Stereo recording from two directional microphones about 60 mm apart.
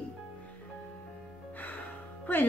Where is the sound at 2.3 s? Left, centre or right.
Left.